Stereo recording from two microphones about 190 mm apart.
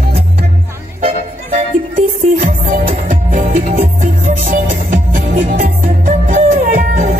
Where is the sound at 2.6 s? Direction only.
45° right (ahead or behind).